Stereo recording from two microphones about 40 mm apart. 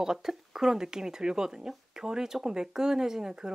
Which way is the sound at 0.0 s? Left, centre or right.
Centre.